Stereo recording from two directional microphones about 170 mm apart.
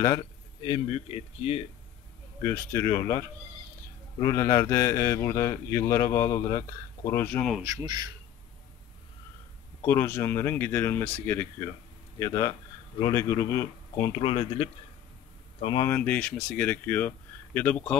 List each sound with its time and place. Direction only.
0.0 s speech: 25° left (ahead or behind)
0.8 s speech: 40° left (ahead or behind)
2.4 s speech: 15° left (ahead or behind)
7.6 s speech: 20° right (ahead or behind)
9.8 s speech: 15° left (ahead or behind)
14.2 s speech: 30° left (ahead or behind)
15.9 s speech: 10° left (ahead or behind)